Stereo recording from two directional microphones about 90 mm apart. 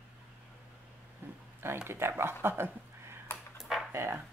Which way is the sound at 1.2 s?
25° right (ahead or behind).